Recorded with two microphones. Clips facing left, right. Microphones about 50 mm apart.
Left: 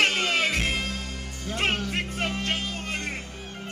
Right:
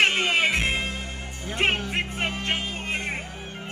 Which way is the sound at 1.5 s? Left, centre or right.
Right.